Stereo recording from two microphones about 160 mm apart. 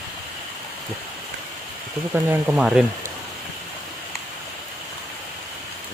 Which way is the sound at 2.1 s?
10° right (ahead or behind).